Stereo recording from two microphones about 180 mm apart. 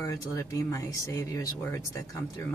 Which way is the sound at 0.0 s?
15° left (ahead or behind).